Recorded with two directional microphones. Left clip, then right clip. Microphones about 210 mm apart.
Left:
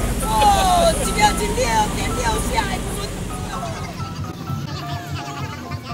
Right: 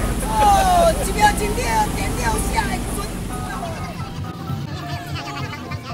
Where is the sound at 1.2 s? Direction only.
5° right (ahead or behind).